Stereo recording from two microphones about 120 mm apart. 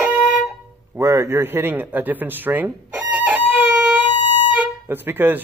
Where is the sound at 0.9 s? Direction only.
25° right (ahead or behind).